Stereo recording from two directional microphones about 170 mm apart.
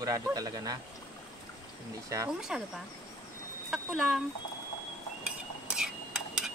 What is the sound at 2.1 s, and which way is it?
Speech, 20° right (ahead or behind).